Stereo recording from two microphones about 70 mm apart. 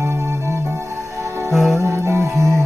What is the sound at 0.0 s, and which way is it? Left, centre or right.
Music, right.